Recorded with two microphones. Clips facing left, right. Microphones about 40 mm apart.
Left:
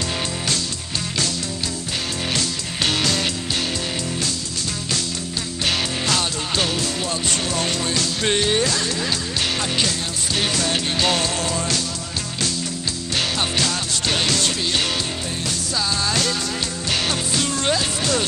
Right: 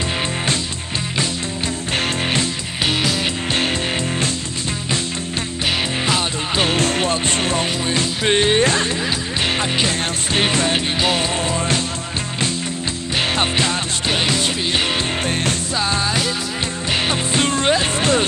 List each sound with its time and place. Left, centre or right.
2.9 s music: centre
6.0 s music: centre
6.7 s music: right
11.0 s music: centre
13.4 s music: right
15.4 s music: right
17.1 s music: right